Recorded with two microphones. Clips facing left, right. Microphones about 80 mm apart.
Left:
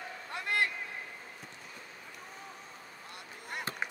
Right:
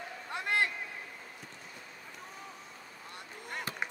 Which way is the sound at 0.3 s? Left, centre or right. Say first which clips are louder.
Right 1 dB; right.